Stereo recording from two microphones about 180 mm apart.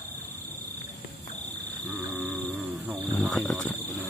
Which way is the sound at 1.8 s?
10° left (ahead or behind).